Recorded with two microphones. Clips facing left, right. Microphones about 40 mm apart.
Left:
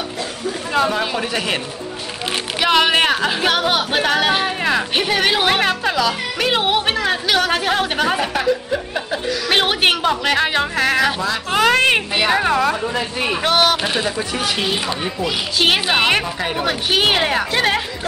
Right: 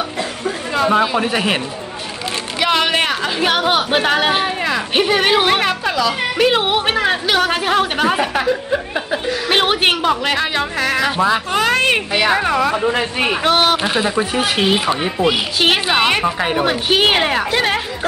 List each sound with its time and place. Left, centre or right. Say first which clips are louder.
0.8 s speech: right 5 dB; centre
2.6 s a woman's voice: left 1 dB; centre
3.3 s a woman's voice: right 2 dB; centre
9.5 s a woman's voice: right 1 dB; centre
10.4 s a woman's voice: left 1 dB; centre
12.9 s a man's voice: right 3 dB; right
13.4 s a woman's voice: right 1 dB; centre
14.0 s speech: right 4 dB; right
15.6 s a woman's voice: right 1 dB; centre
16.3 s a woman's voice: right 4 dB; centre